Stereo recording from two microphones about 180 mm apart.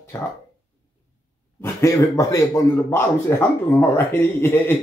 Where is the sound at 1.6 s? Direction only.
15° left (ahead or behind).